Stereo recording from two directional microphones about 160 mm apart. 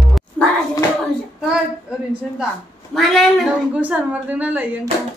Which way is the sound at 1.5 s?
5° right (ahead or behind).